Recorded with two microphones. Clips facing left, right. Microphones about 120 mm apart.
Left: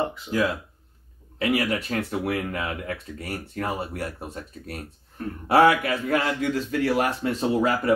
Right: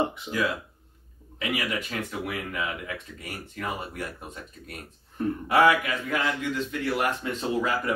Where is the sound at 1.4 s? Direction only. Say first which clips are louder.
Left 6 dB; 35° left (ahead or behind).